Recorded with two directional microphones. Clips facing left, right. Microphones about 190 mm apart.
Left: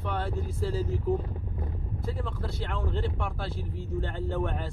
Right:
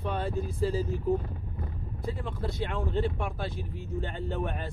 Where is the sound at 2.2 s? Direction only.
15° right (ahead or behind).